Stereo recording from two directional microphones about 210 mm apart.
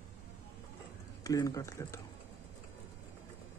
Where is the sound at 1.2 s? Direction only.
15° left (ahead or behind).